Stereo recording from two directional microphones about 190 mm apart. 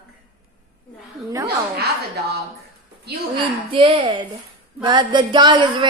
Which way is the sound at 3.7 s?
25° right (ahead or behind).